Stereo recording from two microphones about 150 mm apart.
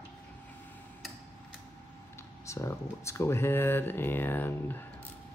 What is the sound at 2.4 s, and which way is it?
Speech, 20° left (ahead or behind).